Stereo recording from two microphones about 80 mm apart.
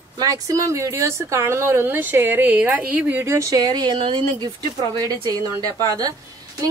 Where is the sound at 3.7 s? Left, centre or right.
Right.